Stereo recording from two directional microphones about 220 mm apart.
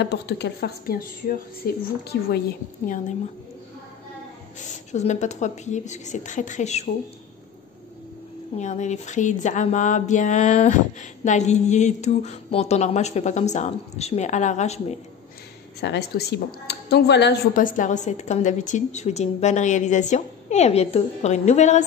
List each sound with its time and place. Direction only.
0.0 s a woman's voice: 50° left (ahead or behind)
2.9 s speech: 35° left (ahead or behind)
4.9 s speech: 30° left (ahead or behind)
8.5 s speech: 30° left (ahead or behind)
15.8 s speech: 50° left (ahead or behind); by 21.8 s 30° left (ahead or behind)